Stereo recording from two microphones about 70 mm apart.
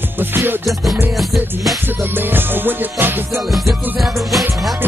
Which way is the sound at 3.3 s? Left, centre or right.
Centre.